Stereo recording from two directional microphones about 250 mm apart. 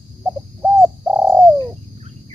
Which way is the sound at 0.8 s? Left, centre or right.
Centre.